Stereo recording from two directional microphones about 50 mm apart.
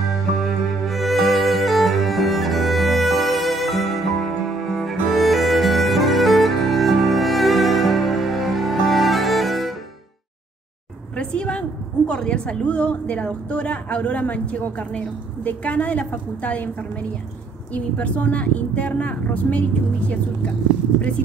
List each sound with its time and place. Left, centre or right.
0.3 s music: centre
11.1 s a sound: left
12.1 s a woman's voice: left
17.7 s a woman's voice: left